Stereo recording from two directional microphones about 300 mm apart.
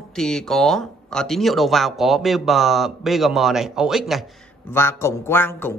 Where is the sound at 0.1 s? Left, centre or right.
Centre.